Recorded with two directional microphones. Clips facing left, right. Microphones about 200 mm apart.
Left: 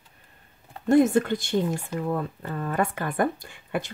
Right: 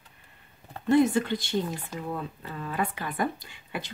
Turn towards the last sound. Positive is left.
turn(degrees=50)  # may be behind; listen again after turning